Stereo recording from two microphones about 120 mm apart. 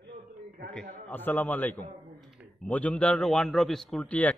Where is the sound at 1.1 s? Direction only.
15° left (ahead or behind).